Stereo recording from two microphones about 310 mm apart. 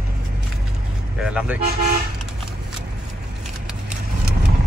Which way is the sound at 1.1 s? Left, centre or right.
Centre.